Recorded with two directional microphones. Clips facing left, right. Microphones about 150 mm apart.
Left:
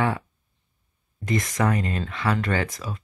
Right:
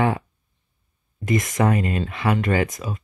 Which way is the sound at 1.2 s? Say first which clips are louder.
Right 3 dB; 20° right (ahead or behind).